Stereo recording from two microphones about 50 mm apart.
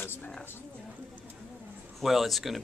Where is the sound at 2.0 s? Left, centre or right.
Centre.